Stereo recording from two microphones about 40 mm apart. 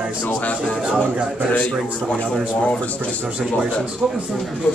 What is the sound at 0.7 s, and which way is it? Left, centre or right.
Speech, centre.